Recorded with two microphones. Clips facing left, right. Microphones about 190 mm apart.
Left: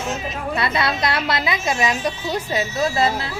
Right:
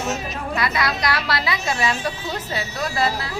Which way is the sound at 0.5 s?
25° left (ahead or behind).